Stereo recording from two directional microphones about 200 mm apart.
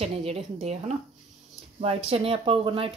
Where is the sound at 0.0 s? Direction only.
30° right (ahead or behind).